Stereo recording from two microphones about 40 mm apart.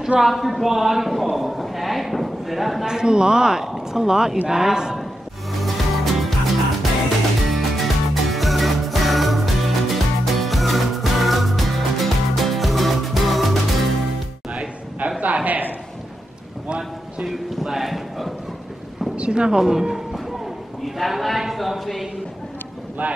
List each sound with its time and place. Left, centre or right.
0.2 s a man's voice: centre
2.8 s speech: centre
5.6 s music: centre
15.0 s a sound: right
17.3 s clip-clop: centre
17.6 s a sound: centre
19.1 s speech: right
19.6 s speech: centre
20.8 s a sound: centre
23.0 s speech: right